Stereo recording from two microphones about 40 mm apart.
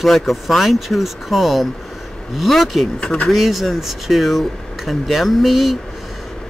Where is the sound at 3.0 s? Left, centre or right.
Left.